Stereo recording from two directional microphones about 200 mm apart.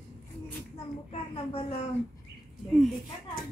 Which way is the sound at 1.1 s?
30° left (ahead or behind).